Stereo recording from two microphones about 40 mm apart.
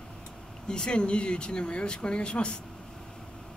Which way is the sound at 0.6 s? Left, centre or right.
Left.